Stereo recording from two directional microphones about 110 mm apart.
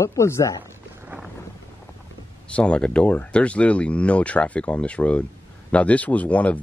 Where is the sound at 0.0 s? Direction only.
25° left (ahead or behind).